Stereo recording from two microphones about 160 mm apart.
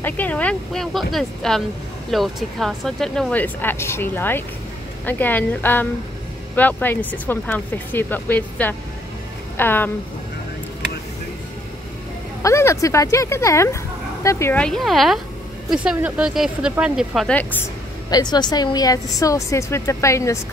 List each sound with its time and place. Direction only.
0.0 s speech: 10° left (ahead or behind)
12.4 s speech: 15° left (ahead or behind); by 17.4 s centre (ahead or behind)
18.1 s speech: 25° left (ahead or behind)